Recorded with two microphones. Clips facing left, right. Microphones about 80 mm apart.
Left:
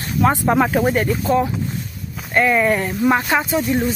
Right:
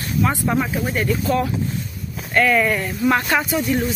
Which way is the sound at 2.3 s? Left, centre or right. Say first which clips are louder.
Left 1 dB; left.